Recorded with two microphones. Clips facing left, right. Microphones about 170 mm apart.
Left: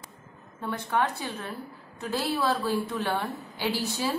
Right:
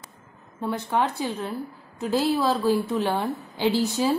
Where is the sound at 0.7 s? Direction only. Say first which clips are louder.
Right 3 dB; 15° right (ahead or behind).